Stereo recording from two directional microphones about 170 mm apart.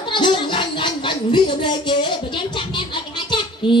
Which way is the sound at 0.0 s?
30° left (ahead or behind).